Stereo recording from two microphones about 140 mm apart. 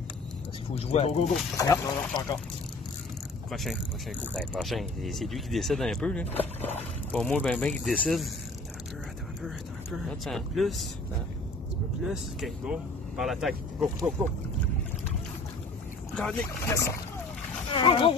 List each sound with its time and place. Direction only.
0.7 s speech: 50° left (ahead or behind)
1.6 s speech: 25° left (ahead or behind)
3.5 s speech: centre (ahead or behind)
9.9 s speech: centre (ahead or behind)
12.0 s speech: 5° right (ahead or behind)
16.2 s speech: 5° left (ahead or behind)
16.6 s speech: 20° left (ahead or behind)
17.7 s speech: 40° left (ahead or behind)